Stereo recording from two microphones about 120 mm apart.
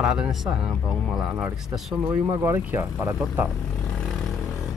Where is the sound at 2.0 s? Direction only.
20° right (ahead or behind).